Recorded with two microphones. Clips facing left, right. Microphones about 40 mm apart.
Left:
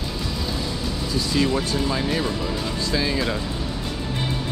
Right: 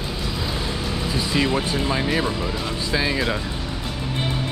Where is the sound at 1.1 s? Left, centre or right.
Right.